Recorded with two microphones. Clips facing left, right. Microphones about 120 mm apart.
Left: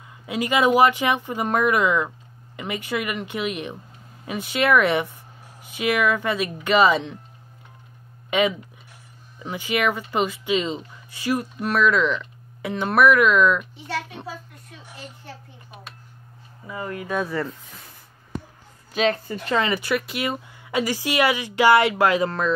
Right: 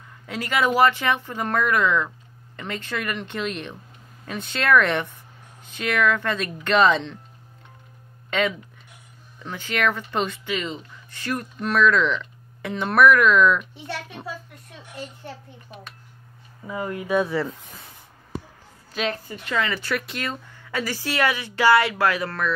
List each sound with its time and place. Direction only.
0.3 s speech: 15° left (ahead or behind)
8.3 s speech: 15° left (ahead or behind)
10.4 s speech: 20° left (ahead or behind); by 13.7 s centre (ahead or behind)
16.6 s speech: 20° right (ahead or behind)
17.1 s speech: centre (ahead or behind)
19.2 s speech: 40° left (ahead or behind)
19.6 s speech: 15° left (ahead or behind)